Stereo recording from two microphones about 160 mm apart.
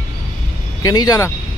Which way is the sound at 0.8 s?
20° left (ahead or behind).